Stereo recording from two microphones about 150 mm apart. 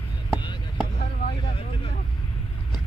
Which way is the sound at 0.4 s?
30° left (ahead or behind).